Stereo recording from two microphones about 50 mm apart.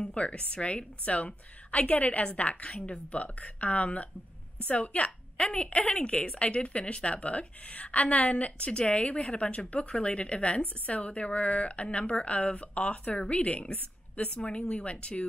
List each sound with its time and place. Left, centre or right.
0.0 s a woman's voice: left